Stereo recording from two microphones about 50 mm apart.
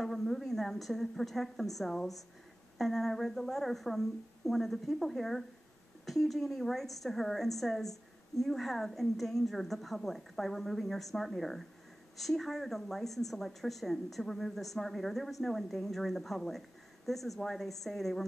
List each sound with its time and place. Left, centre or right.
0.0 s a woman's voice: centre